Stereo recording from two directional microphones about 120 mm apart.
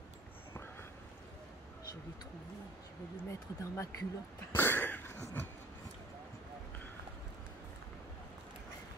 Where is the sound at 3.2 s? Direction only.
25° left (ahead or behind).